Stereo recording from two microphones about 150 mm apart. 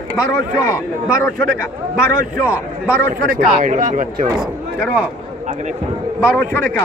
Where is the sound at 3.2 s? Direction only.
70° right (ahead or behind).